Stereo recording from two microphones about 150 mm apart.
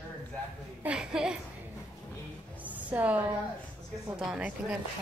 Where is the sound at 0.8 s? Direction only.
5° right (ahead or behind).